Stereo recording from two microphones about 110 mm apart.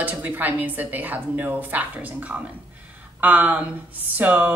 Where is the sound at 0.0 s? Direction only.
15° right (ahead or behind).